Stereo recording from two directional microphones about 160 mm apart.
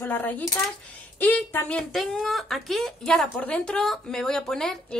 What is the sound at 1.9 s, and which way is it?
Speech, centre (ahead or behind).